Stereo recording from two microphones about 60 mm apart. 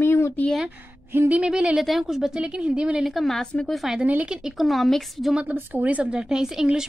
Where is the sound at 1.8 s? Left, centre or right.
Centre.